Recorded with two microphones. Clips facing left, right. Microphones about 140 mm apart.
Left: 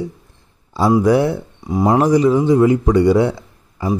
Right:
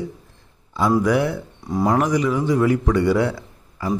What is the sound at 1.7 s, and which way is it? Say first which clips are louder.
Speech: left 4 dB; 15° left (ahead or behind).